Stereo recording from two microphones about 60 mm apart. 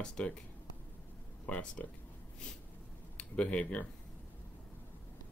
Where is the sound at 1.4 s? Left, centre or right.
Left.